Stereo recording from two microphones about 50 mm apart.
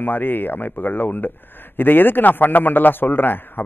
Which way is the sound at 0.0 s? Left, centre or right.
Left.